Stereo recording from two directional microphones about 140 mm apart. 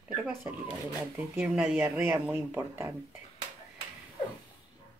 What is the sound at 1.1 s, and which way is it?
Speech, 15° right (ahead or behind).